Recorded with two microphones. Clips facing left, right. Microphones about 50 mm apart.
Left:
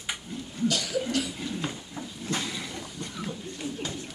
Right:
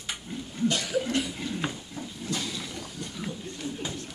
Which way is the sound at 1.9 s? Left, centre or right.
Left.